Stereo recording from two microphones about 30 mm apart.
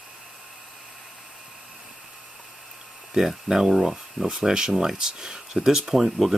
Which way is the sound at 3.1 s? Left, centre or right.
Centre.